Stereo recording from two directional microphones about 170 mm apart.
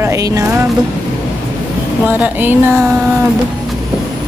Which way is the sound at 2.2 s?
10° right (ahead or behind).